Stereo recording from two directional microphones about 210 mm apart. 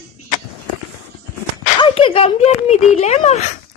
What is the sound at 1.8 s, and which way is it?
Speech, 25° left (ahead or behind).